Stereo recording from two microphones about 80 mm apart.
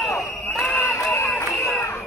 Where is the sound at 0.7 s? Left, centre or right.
Left.